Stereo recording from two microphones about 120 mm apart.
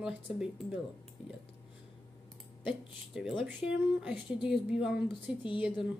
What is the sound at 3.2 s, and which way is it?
Speech, centre (ahead or behind).